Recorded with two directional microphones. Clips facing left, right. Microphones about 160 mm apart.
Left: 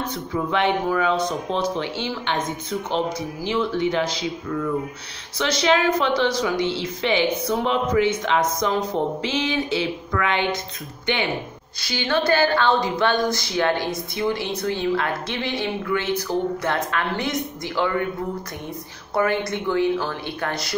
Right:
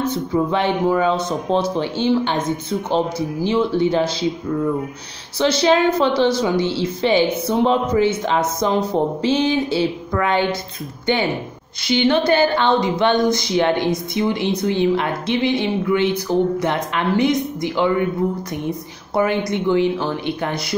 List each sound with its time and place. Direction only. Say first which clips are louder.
0.0 s speech: right 7 dB; 30° right (ahead or behind)
3.4 s a woman's voice: right 4 dB; 30° right (ahead or behind)
11.8 s a woman's voice: right 6 dB; 20° right (ahead or behind)
19.1 s speech: right 3 dB; 15° right (ahead or behind)